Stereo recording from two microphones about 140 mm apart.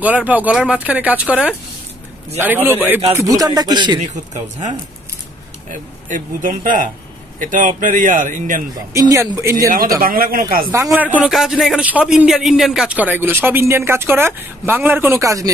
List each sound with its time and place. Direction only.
0.0 s a man's voice: 10° right (ahead or behind); by 4.0 s 35° right (ahead or behind)
4.0 s a man's voice: 60° right (ahead or behind)
8.9 s speech: 20° right (ahead or behind)
9.9 s speech: 90° right
10.7 s a man's voice: 15° right (ahead or behind)